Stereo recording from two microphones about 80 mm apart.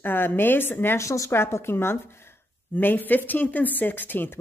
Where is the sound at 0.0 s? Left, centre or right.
Left.